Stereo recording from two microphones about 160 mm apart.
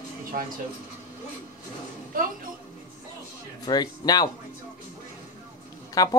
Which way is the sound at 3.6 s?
25° left (ahead or behind).